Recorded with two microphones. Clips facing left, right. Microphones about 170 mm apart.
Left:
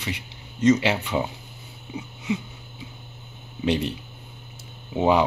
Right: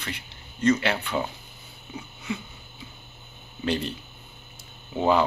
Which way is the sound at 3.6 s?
15° left (ahead or behind).